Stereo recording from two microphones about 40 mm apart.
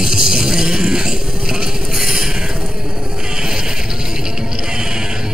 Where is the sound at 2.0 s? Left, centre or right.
Centre.